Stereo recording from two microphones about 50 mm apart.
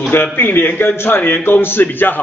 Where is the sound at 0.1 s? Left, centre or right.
Left.